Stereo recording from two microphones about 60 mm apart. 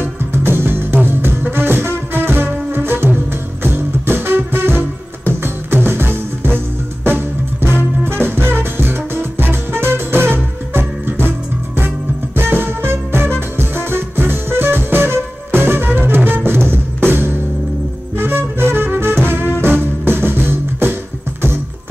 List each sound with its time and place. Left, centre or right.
0.3 s music: right
8.0 s music: right